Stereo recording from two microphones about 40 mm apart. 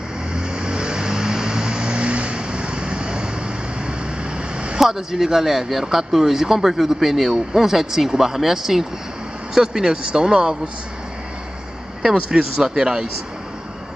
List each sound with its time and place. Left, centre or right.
0.3 s vehicle: centre
4.7 s speech: centre
12.0 s speech: centre